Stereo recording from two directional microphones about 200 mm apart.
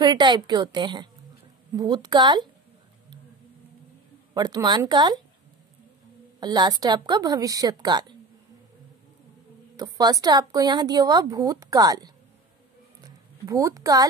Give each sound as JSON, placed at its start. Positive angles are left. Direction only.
{"t": 0.0, "sound": "a woman's voice", "side_deg": -20}
{"t": 4.3, "sound": "a woman's voice", "side_deg": -20}
{"t": 6.4, "sound": "a woman's voice", "side_deg": -20}
{"t": 9.8, "sound": "a woman's voice", "side_deg": -20}
{"t": 13.0, "sound": "a sound", "side_deg": -15}